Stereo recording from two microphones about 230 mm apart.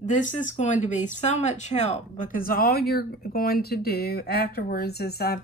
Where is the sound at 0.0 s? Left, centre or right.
Left.